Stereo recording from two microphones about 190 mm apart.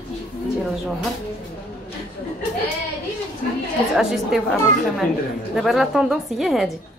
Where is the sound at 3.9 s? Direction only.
Centre (ahead or behind).